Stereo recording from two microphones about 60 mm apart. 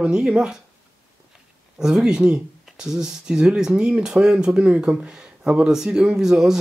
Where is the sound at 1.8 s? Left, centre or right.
Centre.